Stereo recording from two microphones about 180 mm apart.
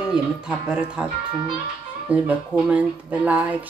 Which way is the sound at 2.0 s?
5° right (ahead or behind).